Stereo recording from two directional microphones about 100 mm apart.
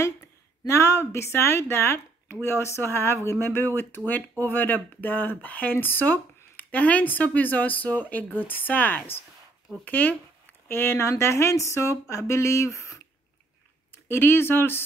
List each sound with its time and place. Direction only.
0.7 s speech: 30° left (ahead or behind)